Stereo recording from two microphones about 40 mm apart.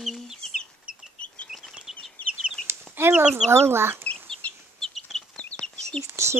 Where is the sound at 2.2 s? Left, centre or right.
Left.